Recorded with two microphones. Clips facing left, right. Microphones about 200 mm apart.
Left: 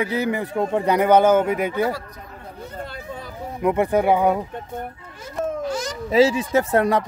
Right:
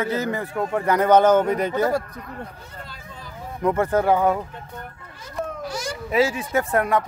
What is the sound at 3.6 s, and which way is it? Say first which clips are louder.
Speech: left 1 dB; 15° left (ahead or behind).